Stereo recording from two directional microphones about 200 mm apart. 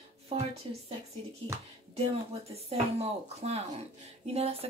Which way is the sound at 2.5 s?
30° right (ahead or behind).